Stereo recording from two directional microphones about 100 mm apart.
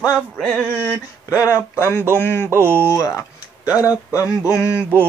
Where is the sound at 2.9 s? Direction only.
35° left (ahead or behind).